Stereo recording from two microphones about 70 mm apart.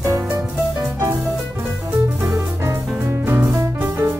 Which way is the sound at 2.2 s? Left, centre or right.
Right.